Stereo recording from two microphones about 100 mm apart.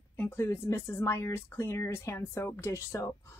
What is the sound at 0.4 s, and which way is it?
Speech, 30° left (ahead or behind).